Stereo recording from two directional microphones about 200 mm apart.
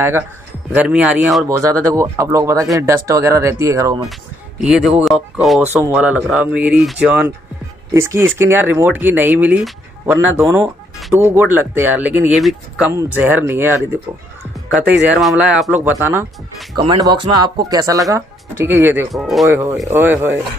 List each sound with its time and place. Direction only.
0.7 s speech: 5° right (ahead or behind)
1.6 s speech: 15° right (ahead or behind)
4.6 s speech: 5° right (ahead or behind)
15.0 s speech: 5° right (ahead or behind)
16.7 s speech: 20° right (ahead or behind)
19.1 s speech: centre (ahead or behind)
19.5 s speech: 15° right (ahead or behind)